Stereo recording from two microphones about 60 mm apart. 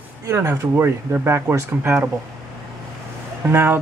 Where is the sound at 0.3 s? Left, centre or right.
Right.